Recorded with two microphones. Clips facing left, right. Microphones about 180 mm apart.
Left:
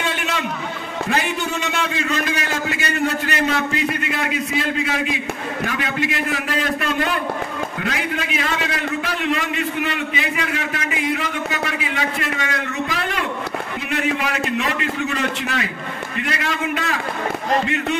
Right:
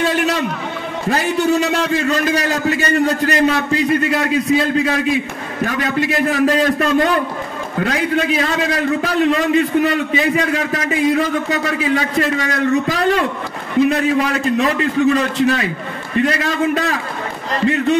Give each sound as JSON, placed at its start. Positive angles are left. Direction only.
{"t": 0.0, "sound": "a sound", "side_deg": -40}
{"t": 1.1, "sound": "a man's voice", "side_deg": -40}
{"t": 6.1, "sound": "a man's voice", "side_deg": -40}